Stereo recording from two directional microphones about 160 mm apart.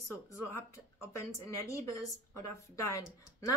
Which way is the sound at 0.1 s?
15° left (ahead or behind).